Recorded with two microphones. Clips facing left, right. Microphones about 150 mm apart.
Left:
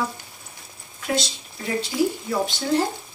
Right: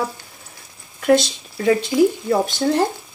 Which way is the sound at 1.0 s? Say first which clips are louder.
Right 10 dB; 65° right (ahead or behind).